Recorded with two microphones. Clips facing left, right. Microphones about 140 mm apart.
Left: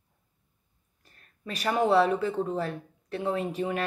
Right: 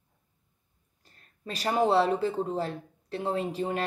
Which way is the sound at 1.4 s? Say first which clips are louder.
Even; 35° right (ahead or behind).